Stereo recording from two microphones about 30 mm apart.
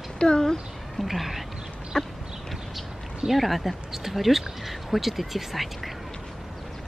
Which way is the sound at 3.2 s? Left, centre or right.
Centre.